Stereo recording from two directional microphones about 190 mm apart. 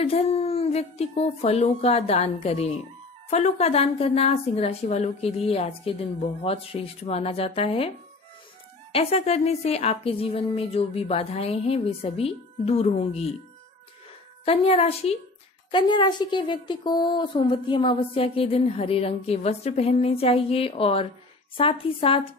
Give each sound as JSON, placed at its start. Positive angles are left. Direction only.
{"t": 0.0, "sound": "speech", "side_deg": 30}
{"t": 8.9, "sound": "speech", "side_deg": 35}
{"t": 14.4, "sound": "a woman's voice", "side_deg": 30}